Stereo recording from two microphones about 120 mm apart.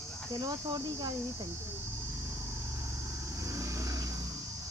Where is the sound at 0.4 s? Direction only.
35° right (ahead or behind).